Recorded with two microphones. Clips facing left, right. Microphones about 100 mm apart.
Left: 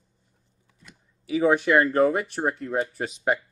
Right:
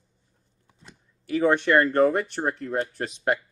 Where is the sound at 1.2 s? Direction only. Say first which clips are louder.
Left 1 dB; 5° left (ahead or behind).